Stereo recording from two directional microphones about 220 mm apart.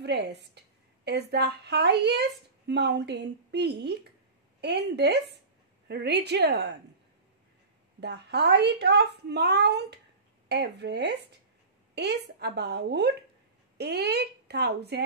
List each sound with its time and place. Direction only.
0.0 s a woman's voice: 50° right (ahead or behind)
8.0 s a woman's voice: 50° right (ahead or behind)